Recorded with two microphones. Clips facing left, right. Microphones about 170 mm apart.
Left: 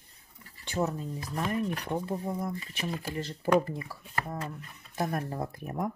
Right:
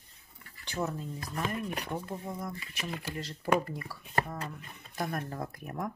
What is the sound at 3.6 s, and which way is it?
Speech, 20° left (ahead or behind).